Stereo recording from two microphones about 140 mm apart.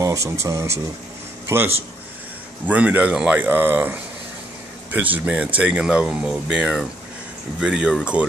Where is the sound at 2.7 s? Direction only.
10° right (ahead or behind).